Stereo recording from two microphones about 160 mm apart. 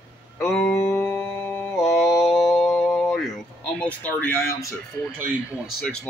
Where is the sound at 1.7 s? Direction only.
Centre (ahead or behind).